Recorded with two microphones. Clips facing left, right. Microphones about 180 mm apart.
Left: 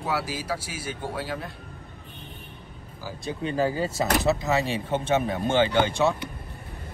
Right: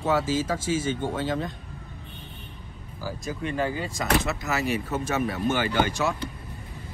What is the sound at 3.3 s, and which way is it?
Speech, 30° left (ahead or behind).